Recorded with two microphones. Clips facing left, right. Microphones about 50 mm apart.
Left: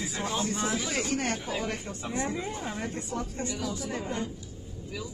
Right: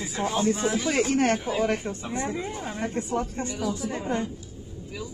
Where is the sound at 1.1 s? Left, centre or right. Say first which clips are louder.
Right 7 dB; right.